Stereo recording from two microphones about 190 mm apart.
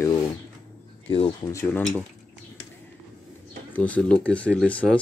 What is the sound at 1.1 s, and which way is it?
Speech, 30° left (ahead or behind).